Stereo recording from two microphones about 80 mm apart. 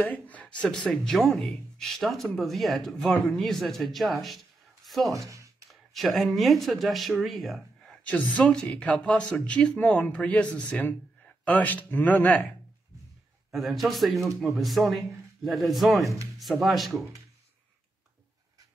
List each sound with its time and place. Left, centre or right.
0.0 s speech: centre
4.8 s a sound: centre
5.1 s speech: right
5.7 s a man's voice: centre
13.5 s speech: centre